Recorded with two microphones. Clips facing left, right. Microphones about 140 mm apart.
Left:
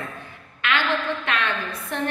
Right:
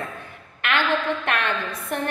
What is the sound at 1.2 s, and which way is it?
Speech, 55° right (ahead or behind).